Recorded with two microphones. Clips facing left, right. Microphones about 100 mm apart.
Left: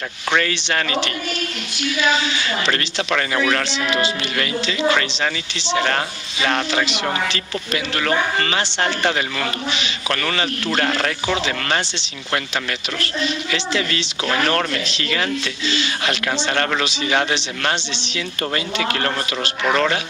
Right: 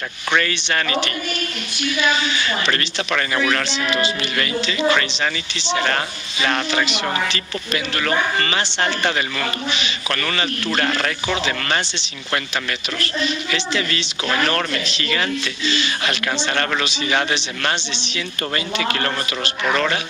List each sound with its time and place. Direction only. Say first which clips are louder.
0.8 s a woman's voice: even; 55° right (ahead or behind)
4.6 s a woman's voice: even; 55° right (ahead or behind)
8.4 s speech: even; 70° left (ahead or behind)
9.7 s a woman's voice: even; 50° right (ahead or behind)
10.9 s speech: left 1 dB; 30° left (ahead or behind)
13.0 s a woman's voice: right 1 dB; 50° right (ahead or behind)